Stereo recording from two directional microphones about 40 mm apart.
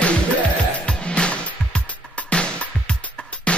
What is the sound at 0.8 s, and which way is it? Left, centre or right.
Music, left.